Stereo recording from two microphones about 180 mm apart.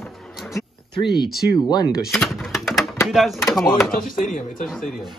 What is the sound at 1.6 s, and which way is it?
Speech, 25° left (ahead or behind).